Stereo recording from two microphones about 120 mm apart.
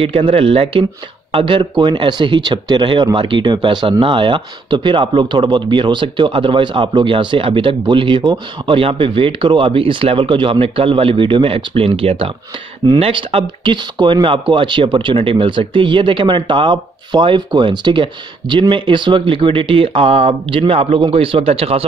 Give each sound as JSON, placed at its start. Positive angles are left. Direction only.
{"t": 0.0, "sound": "speech", "side_deg": -50}